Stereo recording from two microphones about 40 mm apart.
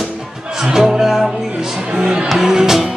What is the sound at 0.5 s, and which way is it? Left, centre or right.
Speech, centre.